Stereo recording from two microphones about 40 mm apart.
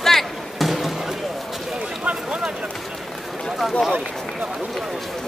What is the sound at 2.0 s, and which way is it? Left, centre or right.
Speech, right.